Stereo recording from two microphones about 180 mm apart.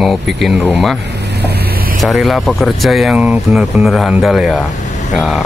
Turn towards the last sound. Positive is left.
turn(degrees=-5)  # may be behind; listen again after turning